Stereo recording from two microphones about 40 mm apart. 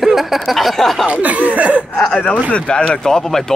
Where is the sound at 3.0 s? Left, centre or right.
Centre.